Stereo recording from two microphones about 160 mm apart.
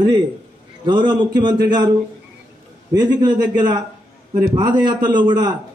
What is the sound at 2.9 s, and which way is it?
A man's voice, 25° right (ahead or behind).